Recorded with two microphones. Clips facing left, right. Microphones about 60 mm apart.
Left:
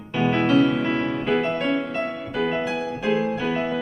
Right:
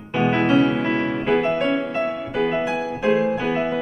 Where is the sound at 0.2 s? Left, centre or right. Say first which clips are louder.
Right 1 dB; right.